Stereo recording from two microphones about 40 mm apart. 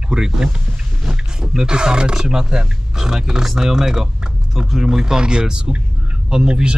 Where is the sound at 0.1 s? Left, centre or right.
Centre.